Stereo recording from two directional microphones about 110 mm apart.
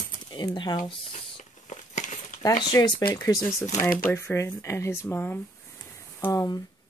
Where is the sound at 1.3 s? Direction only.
90° left.